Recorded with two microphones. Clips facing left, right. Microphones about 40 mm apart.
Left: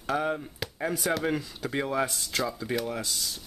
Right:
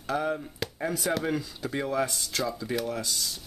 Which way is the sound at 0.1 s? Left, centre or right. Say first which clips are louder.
Even; centre.